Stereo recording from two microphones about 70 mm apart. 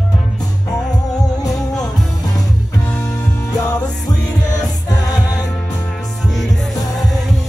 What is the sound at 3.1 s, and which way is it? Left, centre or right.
Music, left.